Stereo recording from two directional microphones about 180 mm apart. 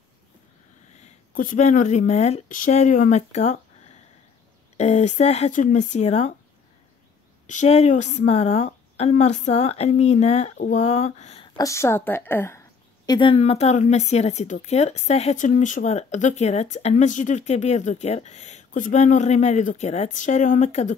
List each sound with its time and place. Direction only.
1.0 s a woman's voice: 50° left (ahead or behind)
4.7 s a woman's voice: 40° left (ahead or behind)
7.4 s a woman's voice: 40° left (ahead or behind)
11.5 s a woman's voice: 15° left (ahead or behind); by 20.9 s 40° left (ahead or behind)